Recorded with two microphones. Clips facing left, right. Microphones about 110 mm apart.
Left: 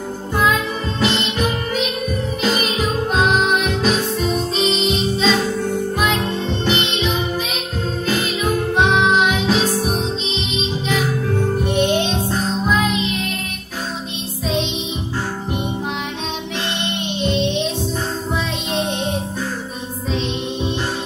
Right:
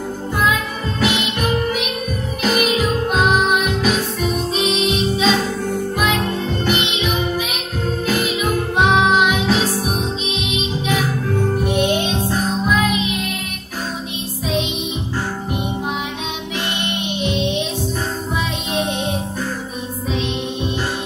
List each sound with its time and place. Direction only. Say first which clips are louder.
1.0 s music: even; 10° right (ahead or behind)
2.6 s music: right 2 dB; 5° right (ahead or behind)
4.6 s music: even; 5° right (ahead or behind)
8.7 s music: right 2 dB; 5° right (ahead or behind)
11.6 s music: even; 5° right (ahead or behind)
17.2 s music: left 2 dB; 10° right (ahead or behind)
18.7 s music: even; 10° right (ahead or behind)